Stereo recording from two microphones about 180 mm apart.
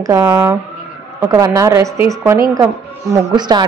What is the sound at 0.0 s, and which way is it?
A woman's voice, 20° right (ahead or behind).